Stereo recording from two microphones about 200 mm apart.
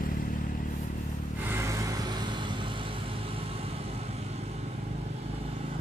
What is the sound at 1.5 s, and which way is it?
Vehicle, 15° right (ahead or behind).